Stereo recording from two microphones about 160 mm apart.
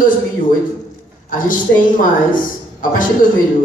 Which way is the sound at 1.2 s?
55° left (ahead or behind).